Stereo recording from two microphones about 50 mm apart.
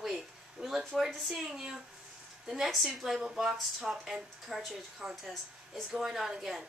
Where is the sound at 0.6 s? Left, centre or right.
Centre.